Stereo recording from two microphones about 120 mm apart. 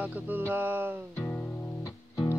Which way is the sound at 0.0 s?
15° right (ahead or behind).